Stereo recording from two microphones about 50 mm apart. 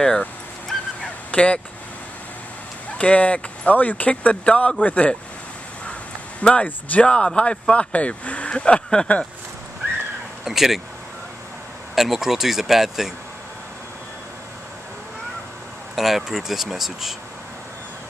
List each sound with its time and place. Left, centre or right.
0.7 s honk: centre
3.0 s speech: left
6.4 s speech: left
10.4 s speech: centre
11.9 s speech: centre
16.0 s speech: centre